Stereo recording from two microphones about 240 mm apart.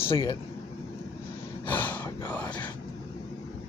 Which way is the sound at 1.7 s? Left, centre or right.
Centre.